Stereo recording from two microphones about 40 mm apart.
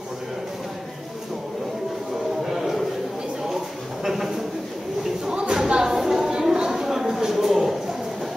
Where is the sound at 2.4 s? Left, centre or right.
Centre.